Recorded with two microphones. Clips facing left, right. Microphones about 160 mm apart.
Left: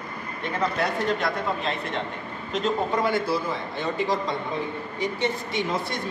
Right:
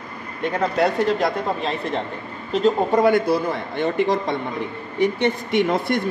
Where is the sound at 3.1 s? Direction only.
60° right (ahead or behind).